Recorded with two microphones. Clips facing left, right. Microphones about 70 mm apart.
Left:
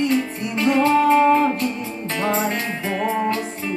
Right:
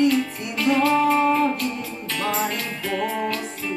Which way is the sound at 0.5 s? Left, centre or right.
Left.